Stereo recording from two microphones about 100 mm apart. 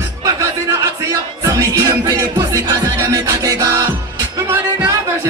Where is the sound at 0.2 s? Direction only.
30° right (ahead or behind).